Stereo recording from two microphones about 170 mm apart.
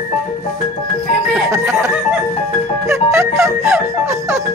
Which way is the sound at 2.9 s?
15° right (ahead or behind).